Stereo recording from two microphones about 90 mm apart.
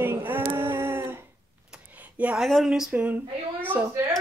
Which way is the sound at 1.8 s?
20° right (ahead or behind).